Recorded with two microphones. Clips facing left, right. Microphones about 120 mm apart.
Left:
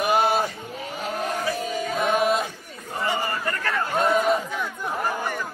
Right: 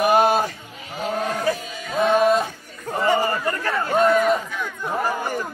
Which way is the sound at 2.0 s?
35° right (ahead or behind).